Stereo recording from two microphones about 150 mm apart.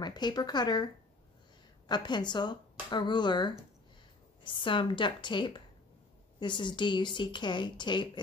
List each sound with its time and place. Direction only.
0.0 s speech: 30° left (ahead or behind)
1.9 s a woman's voice: 30° left (ahead or behind)